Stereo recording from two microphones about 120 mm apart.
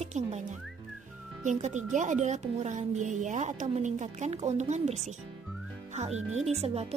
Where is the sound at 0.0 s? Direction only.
70° right (ahead or behind).